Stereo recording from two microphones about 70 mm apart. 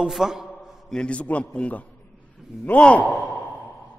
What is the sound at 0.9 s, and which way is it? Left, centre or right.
A man's voice, centre.